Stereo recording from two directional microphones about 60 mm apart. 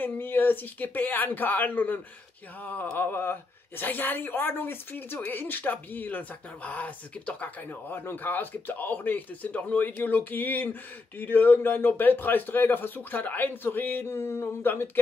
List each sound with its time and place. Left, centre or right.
0.0 s a woman's voice: left